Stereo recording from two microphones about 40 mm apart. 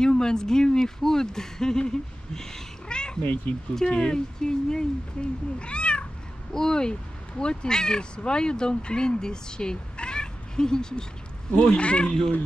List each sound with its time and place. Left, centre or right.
0.0 s speech: centre
3.2 s speech: left
3.8 s speech: left
6.5 s speech: centre